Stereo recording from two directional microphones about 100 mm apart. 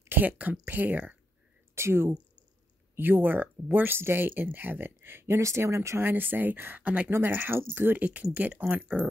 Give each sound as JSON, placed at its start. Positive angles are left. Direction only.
{"t": 0.0, "sound": "speech", "side_deg": -20}